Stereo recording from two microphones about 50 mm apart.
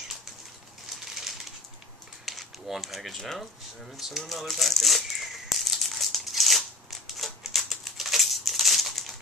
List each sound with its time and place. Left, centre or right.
1.1 s bird: centre
2.2 s speech: centre
3.9 s a sound: centre